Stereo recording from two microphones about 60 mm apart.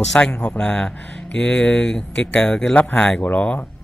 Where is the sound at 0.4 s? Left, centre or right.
Centre.